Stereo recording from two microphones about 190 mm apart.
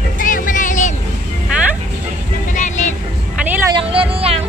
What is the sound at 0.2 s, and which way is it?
Vehicle, 45° left (ahead or behind).